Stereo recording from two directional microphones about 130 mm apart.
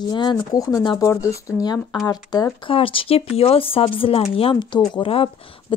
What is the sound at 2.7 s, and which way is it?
Speech, 45° left (ahead or behind).